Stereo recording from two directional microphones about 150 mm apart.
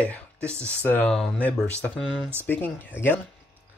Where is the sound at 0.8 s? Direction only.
10° left (ahead or behind).